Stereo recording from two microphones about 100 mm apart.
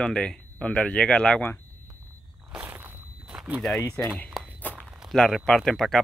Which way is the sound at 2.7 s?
20° right (ahead or behind).